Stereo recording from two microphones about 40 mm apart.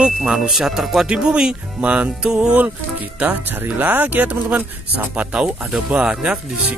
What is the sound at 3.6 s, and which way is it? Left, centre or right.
Speech, right.